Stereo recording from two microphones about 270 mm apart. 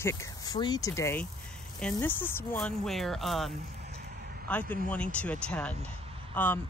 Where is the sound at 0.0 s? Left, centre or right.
Centre.